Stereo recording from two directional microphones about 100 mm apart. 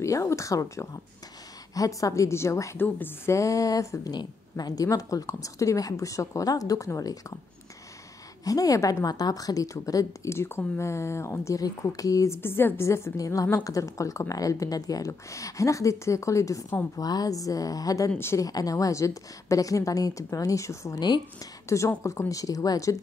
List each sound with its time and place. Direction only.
0.0 s a woman's voice: 30° left (ahead or behind)
8.5 s a woman's voice: 35° left (ahead or behind)
18.5 s a woman's voice: 35° left (ahead or behind)